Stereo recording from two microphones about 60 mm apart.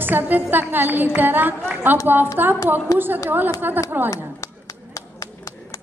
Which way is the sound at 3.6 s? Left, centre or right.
Right.